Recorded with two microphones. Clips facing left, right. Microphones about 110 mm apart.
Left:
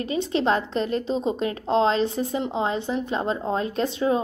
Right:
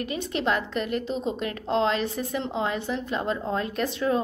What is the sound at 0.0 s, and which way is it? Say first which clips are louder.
A woman's voice: left 4 dB; 25° left (ahead or behind).